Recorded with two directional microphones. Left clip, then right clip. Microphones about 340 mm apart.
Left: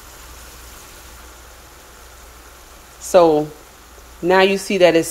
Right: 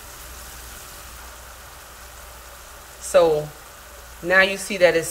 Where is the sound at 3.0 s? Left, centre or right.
Centre.